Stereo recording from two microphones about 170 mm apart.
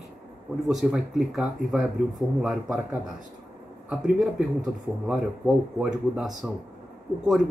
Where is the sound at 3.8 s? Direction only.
Centre (ahead or behind).